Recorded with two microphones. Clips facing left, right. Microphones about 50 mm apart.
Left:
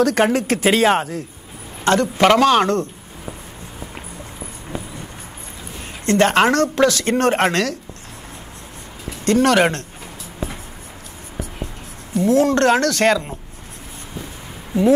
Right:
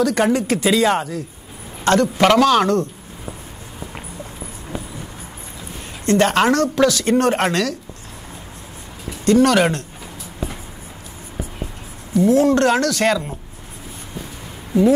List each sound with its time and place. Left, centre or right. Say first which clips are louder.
0.0 s speech: left 1 dB; left
0.8 s speech: left 2 dB; left
1.9 s a man's voice: even; left
4.4 s clip-clop: left 1 dB; centre
6.0 s speech: even; left
9.2 s speech: right 1 dB; left
12.1 s speech: right 1 dB; left